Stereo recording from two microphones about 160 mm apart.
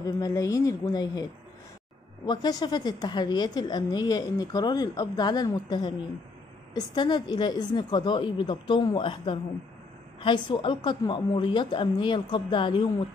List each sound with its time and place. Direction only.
0.2 s a woman's voice: 20° left (ahead or behind)
2.2 s a woman's voice: 25° left (ahead or behind)